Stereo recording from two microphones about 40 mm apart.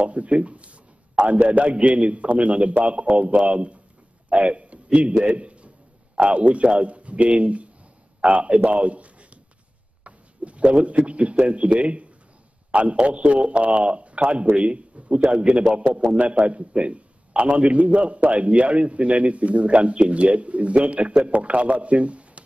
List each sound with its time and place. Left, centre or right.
0.0 s a man's voice: right
8.6 s a sound: right
10.0 s a man's voice: right